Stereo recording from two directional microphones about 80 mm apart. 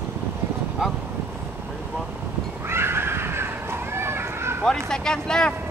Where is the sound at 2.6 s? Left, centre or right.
Right.